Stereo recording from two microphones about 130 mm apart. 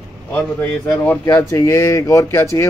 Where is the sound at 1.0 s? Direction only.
20° left (ahead or behind).